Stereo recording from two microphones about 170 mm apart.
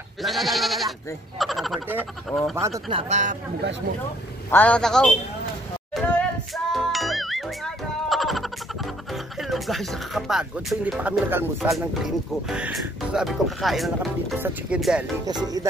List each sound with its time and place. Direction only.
0.2 s goat: centre (ahead or behind)
1.4 s speech: centre (ahead or behind)
2.9 s speech: 40° right (ahead or behind)
4.5 s a man's voice: 10° left (ahead or behind)
5.9 s music: centre (ahead or behind)
9.1 s speech: centre (ahead or behind)
11.7 s speech: centre (ahead or behind)